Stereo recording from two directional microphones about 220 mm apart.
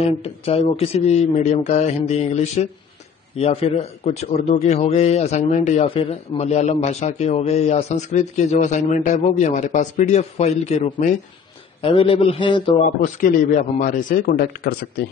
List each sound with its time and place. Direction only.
0.0 s a man's voice: 30° left (ahead or behind)
13.2 s a man's voice: 35° left (ahead or behind)